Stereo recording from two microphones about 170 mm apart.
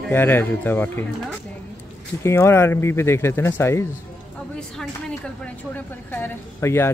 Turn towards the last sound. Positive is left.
turn(degrees=15)  # may be behind; listen again after turning